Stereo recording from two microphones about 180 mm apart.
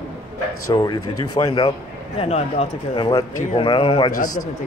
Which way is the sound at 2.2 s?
35° left (ahead or behind).